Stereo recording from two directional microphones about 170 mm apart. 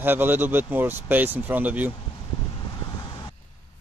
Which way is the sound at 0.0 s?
10° right (ahead or behind).